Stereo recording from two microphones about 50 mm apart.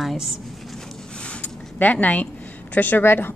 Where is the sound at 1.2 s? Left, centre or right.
Left.